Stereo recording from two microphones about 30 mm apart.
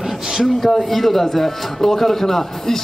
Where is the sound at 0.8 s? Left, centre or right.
Centre.